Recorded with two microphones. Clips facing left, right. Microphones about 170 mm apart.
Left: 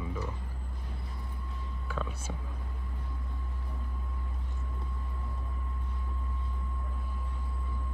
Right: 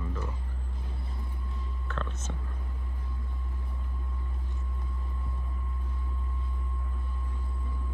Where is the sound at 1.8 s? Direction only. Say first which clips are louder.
Even; 10° left (ahead or behind).